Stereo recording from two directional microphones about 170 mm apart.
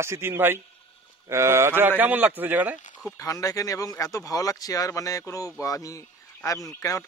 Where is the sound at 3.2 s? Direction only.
20° left (ahead or behind).